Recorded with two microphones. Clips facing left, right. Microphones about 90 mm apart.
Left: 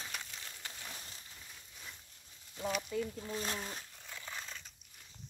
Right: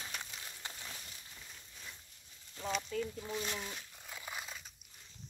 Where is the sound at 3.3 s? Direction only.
40° left (ahead or behind).